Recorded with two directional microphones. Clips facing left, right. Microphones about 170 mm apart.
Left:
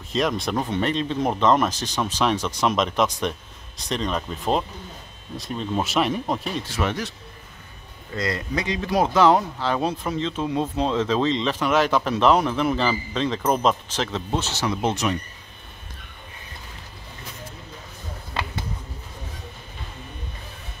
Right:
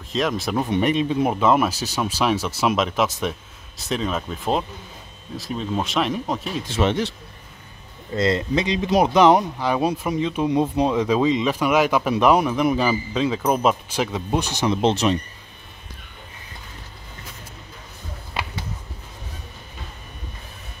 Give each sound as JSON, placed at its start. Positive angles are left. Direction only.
{"t": 0.1, "sound": "speech", "side_deg": 0}
{"t": 6.7, "sound": "speech", "side_deg": -25}